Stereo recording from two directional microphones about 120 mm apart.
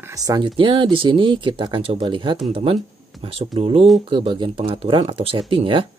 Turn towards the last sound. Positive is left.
turn(degrees=-45)  # may be behind; listen again after turning